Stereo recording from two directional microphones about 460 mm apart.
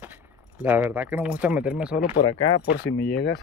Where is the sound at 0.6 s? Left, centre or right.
Centre.